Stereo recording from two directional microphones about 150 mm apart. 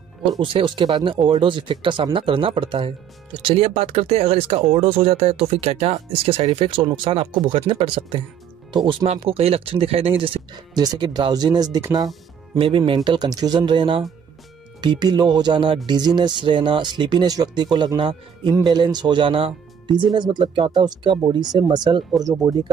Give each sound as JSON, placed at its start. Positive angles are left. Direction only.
{"t": 0.4, "sound": "speech", "side_deg": -35}
{"t": 12.5, "sound": "speech", "side_deg": -35}